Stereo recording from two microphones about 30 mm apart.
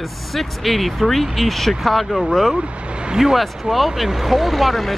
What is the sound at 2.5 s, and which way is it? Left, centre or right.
Speech, right.